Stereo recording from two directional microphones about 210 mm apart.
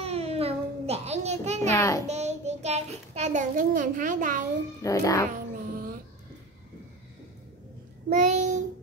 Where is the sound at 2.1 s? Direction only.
30° right (ahead or behind).